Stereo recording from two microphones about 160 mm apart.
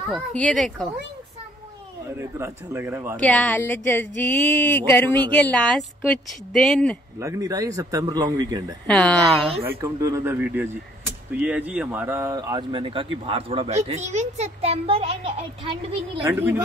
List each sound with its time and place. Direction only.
0.3 s speech: 10° left (ahead or behind)
2.1 s a man's voice: 15° right (ahead or behind)
3.2 s speech: 10° left (ahead or behind)
7.2 s a man's voice: 20° right (ahead or behind)
8.8 s speech: 5° left (ahead or behind)
9.8 s a man's voice: 20° right (ahead or behind)
16.3 s a man's voice: 15° right (ahead or behind)